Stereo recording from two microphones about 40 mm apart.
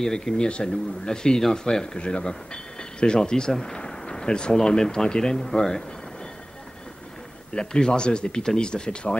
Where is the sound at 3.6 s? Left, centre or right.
Centre.